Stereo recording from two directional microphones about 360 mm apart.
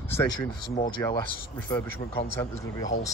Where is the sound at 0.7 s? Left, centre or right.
Centre.